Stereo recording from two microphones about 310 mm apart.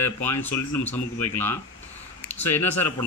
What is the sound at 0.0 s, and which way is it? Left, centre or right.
Speech, centre.